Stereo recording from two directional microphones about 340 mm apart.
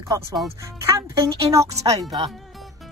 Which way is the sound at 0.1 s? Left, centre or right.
Centre.